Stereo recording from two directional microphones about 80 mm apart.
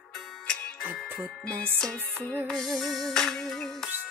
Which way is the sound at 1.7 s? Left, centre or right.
Centre.